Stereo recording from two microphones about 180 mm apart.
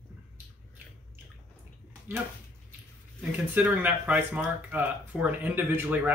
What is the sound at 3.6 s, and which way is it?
Speech, 10° right (ahead or behind).